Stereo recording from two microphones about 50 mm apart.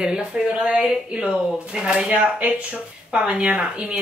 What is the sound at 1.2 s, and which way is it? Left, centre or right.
Speech, centre.